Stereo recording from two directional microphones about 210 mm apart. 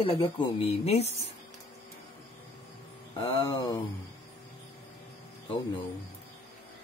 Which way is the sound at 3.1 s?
20° left (ahead or behind).